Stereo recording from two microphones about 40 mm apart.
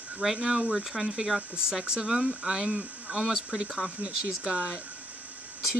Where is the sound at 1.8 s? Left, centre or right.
Right.